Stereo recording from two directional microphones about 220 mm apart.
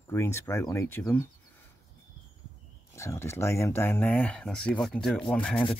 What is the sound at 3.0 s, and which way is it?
Speech, 10° left (ahead or behind).